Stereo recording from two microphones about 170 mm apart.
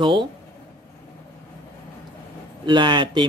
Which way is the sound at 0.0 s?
30° right (ahead or behind).